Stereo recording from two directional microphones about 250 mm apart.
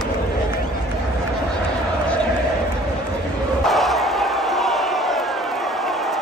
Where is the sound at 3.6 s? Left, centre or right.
Centre.